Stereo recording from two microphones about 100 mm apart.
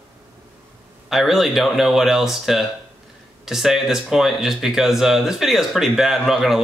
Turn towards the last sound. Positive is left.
turn(degrees=0)  # may be behind; listen again after turning